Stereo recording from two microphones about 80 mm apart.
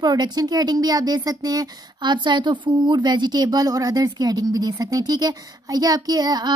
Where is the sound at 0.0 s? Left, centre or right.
Right.